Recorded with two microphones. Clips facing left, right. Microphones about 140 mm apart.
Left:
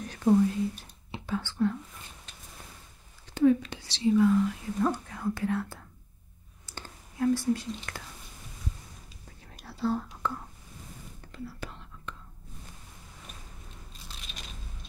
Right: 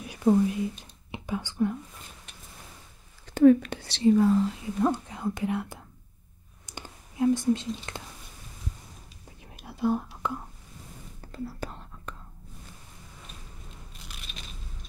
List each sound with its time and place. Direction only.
0.0 s whispering: 10° right (ahead or behind)
3.3 s speech: 55° right (ahead or behind); by 4.6 s 35° right (ahead or behind)
4.8 s speech: 20° right (ahead or behind)
6.6 s whispering: 15° right (ahead or behind)
9.7 s whispering: 15° right (ahead or behind)
10.2 s speech: 15° right (ahead or behind)
11.3 s whispering: 40° right (ahead or behind)